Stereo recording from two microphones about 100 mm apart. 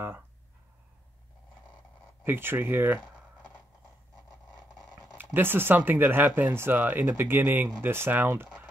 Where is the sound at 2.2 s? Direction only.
20° right (ahead or behind).